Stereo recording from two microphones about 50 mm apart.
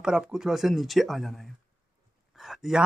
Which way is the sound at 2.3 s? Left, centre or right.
Centre.